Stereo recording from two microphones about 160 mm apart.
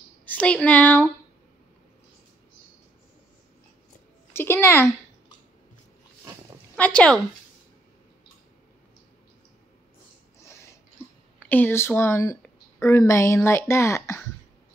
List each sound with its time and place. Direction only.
0.2 s speech: 10° left (ahead or behind)
4.3 s a sound: 15° left (ahead or behind)
6.8 s speech: 10° left (ahead or behind)
11.3 s speech: 10° left (ahead or behind)